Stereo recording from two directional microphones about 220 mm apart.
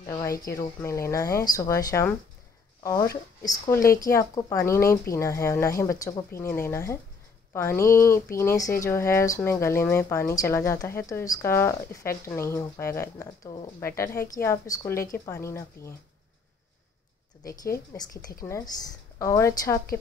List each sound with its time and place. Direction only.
0.0 s speech: 15° left (ahead or behind)
17.9 s speech: 10° left (ahead or behind)
19.1 s speech: 15° left (ahead or behind)